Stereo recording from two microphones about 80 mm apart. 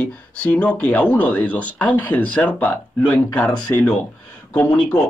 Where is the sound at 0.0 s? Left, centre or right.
Centre.